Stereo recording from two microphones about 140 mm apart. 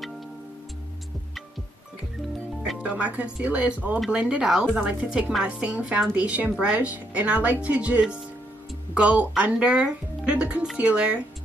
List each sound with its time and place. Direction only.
2.8 s speech: 10° right (ahead or behind)